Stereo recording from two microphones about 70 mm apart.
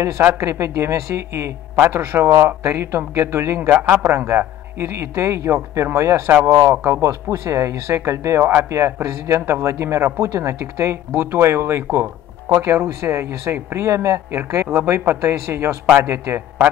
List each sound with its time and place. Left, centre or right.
0.4 s speech: right